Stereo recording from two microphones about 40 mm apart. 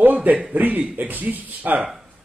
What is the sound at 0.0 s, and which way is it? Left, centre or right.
Speech, right.